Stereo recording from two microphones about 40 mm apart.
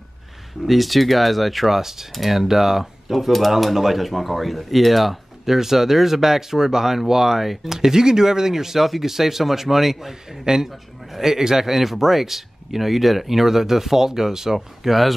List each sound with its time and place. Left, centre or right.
0.7 s speech: centre